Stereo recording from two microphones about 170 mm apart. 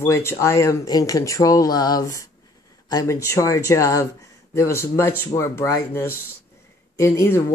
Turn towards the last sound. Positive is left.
turn(degrees=15)  # may be behind; listen again after turning